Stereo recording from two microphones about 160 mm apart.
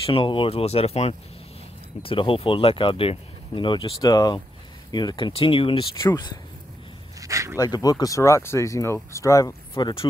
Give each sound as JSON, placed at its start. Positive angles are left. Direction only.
{"t": 0.0, "sound": "speech", "side_deg": 30}
{"t": 7.2, "sound": "speech", "side_deg": -20}
{"t": 7.5, "sound": "speech", "side_deg": 25}